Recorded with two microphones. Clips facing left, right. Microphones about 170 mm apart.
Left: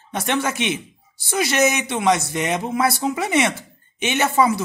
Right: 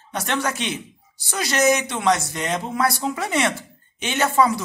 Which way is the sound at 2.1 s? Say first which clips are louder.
Left 3 dB; 10° left (ahead or behind).